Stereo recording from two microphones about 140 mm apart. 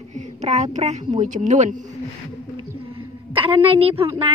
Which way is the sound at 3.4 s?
40° right (ahead or behind).